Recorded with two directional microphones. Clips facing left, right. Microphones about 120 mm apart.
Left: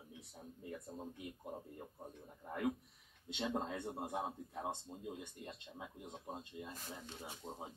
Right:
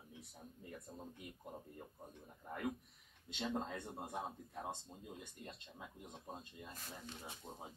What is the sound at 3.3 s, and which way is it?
Speech, 20° left (ahead or behind).